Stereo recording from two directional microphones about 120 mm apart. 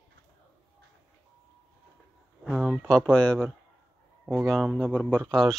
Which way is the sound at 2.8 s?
5° left (ahead or behind).